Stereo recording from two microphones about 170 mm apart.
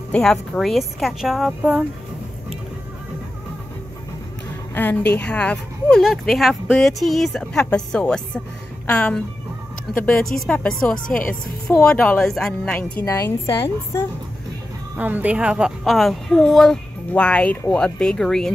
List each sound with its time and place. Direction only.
0.1 s speech: 5° left (ahead or behind)
4.7 s a woman's voice: 10° left (ahead or behind)
13.0 s a woman's voice: 20° left (ahead or behind)
15.0 s speech: 10° right (ahead or behind)